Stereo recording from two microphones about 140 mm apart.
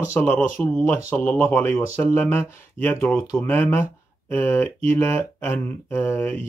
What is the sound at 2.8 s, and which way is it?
Speech, 15° left (ahead or behind).